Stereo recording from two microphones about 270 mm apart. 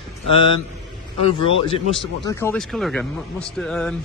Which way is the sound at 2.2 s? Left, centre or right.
Centre.